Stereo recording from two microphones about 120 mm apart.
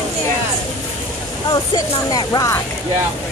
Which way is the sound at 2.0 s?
35° left (ahead or behind).